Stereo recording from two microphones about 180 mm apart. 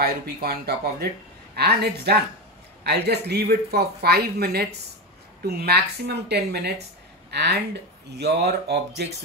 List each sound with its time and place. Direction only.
0.0 s a man's voice: 60° right (ahead or behind)